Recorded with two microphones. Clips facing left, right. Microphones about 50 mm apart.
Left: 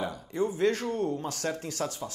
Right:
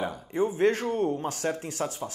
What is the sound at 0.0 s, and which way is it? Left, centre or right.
Speech, right.